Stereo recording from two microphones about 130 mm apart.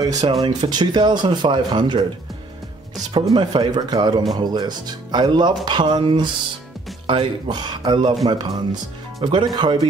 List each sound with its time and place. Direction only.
0.0 s a man's voice: 30° right (ahead or behind)
3.1 s a man's voice: 35° right (ahead or behind)